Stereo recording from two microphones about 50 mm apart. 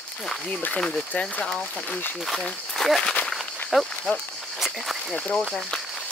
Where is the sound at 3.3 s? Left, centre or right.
Centre.